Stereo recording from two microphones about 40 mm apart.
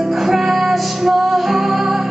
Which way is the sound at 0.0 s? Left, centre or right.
Centre.